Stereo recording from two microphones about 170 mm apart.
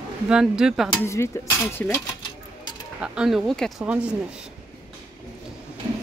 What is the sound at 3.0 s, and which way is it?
Speech, 5° right (ahead or behind).